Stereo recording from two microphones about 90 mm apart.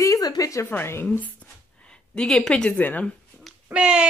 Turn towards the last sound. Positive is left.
turn(degrees=-10)  # may be behind; listen again after turning